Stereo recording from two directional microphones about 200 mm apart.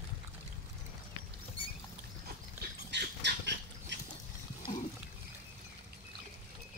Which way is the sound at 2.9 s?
60° right (ahead or behind).